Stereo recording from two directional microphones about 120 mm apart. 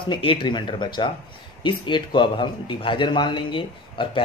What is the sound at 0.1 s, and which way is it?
A man's voice, 45° left (ahead or behind).